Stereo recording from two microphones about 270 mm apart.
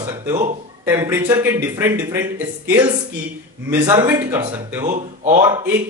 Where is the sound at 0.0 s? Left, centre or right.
Centre.